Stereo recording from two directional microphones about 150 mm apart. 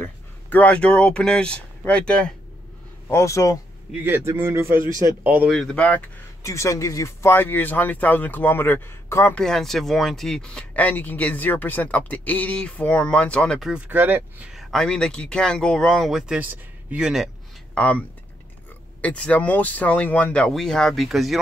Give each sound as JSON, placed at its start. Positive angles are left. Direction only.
{"t": 0.0, "sound": "speech", "side_deg": 10}
{"t": 3.1, "sound": "speech", "side_deg": 20}
{"t": 3.9, "sound": "a man's voice", "side_deg": -15}
{"t": 5.5, "sound": "speech", "side_deg": 5}
{"t": 6.4, "sound": "speech", "side_deg": 20}
{"t": 9.4, "sound": "speech", "side_deg": 5}
{"t": 13.7, "sound": "speech", "side_deg": -10}
{"t": 17.7, "sound": "speech", "side_deg": 10}